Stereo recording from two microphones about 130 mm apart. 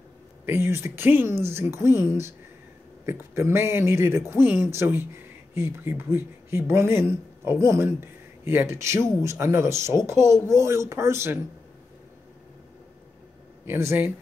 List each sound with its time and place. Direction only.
0.5 s speech: 20° right (ahead or behind)
13.7 s speech: 20° right (ahead or behind)